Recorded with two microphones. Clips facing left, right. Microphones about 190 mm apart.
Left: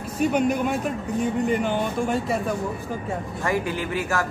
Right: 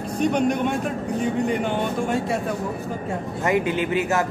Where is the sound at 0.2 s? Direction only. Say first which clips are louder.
Even; 5° left (ahead or behind).